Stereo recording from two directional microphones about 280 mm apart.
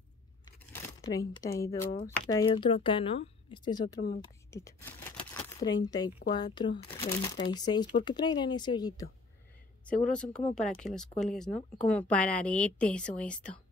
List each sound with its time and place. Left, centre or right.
0.7 s speech: centre
9.8 s speech: centre